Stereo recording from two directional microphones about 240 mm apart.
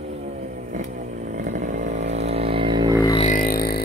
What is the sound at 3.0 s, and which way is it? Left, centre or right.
Vehicle, left.